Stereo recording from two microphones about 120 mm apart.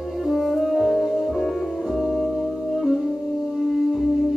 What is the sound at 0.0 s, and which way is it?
Music, centre (ahead or behind).